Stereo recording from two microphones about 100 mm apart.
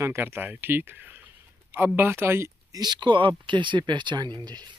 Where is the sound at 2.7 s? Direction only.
45° right (ahead or behind).